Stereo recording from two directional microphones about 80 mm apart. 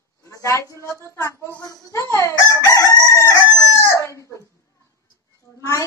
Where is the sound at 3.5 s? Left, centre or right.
Left.